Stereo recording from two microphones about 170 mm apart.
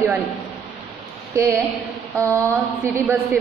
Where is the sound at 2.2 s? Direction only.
15° right (ahead or behind).